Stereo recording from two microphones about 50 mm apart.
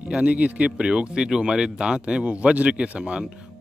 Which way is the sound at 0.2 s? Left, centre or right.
Right.